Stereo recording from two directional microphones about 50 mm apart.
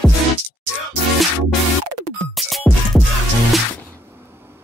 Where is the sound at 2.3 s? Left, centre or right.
Centre.